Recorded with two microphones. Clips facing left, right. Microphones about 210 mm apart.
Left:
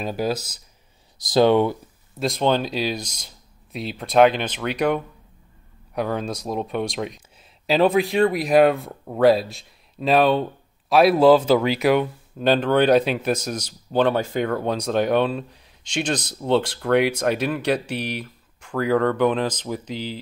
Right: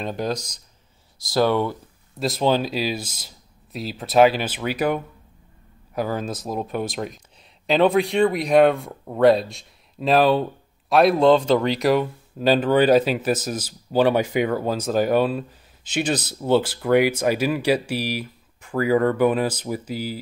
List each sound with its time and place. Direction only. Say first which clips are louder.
0.0 s speech: left 1 dB; 5° left (ahead or behind)
1.2 s speech: left 4 dB; 20° left (ahead or behind)
2.1 s speech: even; centre (ahead or behind)
14.5 s speech: even; 5° right (ahead or behind)